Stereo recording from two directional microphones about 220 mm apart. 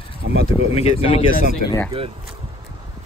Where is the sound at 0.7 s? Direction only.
25° left (ahead or behind).